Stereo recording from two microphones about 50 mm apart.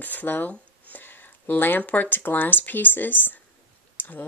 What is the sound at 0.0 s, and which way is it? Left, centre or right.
Speech, left.